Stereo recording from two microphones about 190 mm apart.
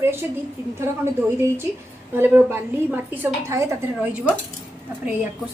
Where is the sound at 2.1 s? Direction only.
10° right (ahead or behind).